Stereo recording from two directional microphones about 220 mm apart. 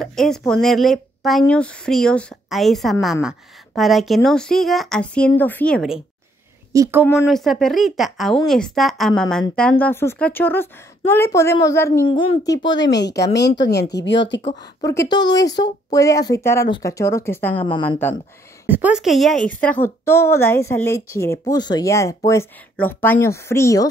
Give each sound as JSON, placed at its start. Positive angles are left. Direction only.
{"t": 0.0, "sound": "speech", "side_deg": 0}
{"t": 6.7, "sound": "a woman's voice", "side_deg": -10}
{"t": 7.2, "sound": "a woman's voice", "side_deg": 0}
{"t": 12.1, "sound": "a woman's voice", "side_deg": 20}
{"t": 13.3, "sound": "speech", "side_deg": 50}
{"t": 14.4, "sound": "a woman's voice", "side_deg": 20}
{"t": 18.7, "sound": "a woman's voice", "side_deg": -5}